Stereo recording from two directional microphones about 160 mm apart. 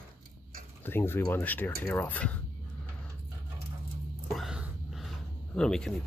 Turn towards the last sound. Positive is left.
turn(degrees=5)  # may be behind; listen again after turning